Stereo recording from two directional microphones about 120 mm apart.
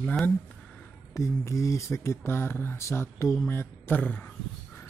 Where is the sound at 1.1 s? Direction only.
25° left (ahead or behind).